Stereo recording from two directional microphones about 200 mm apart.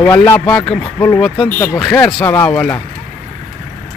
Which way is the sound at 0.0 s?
10° left (ahead or behind).